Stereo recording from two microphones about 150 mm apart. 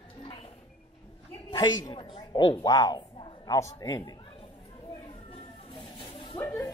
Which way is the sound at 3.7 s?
25° left (ahead or behind).